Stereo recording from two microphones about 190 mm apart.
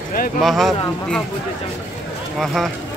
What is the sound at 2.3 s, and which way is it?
Speech, centre (ahead or behind).